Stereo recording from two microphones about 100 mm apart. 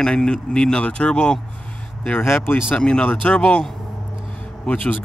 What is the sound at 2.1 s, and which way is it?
Speech, 20° left (ahead or behind).